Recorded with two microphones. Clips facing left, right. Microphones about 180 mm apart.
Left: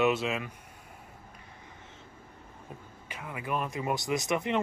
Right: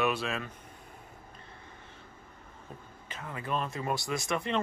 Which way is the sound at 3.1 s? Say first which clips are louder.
Left 1 dB; 15° left (ahead or behind).